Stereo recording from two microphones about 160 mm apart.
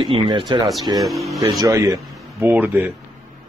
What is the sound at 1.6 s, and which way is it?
Speech, 20° right (ahead or behind).